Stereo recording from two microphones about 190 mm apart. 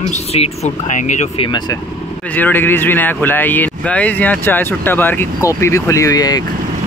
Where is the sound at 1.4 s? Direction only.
20° left (ahead or behind).